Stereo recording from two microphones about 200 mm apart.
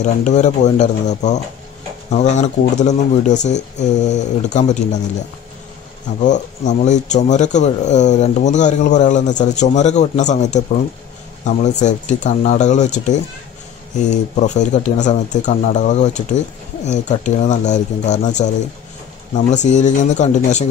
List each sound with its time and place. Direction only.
0.0 s speech: 35° left (ahead or behind)
6.2 s speech: 35° left (ahead or behind)